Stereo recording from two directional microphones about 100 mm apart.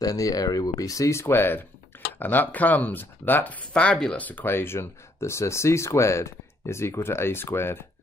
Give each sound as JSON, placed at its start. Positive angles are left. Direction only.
{"t": 0.0, "sound": "speech", "side_deg": 35}
{"t": 1.2, "sound": "speech", "side_deg": 20}